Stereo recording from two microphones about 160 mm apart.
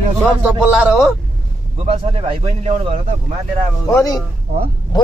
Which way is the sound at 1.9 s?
40° right (ahead or behind).